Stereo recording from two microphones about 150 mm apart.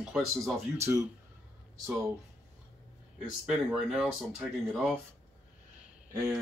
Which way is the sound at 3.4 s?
5° right (ahead or behind).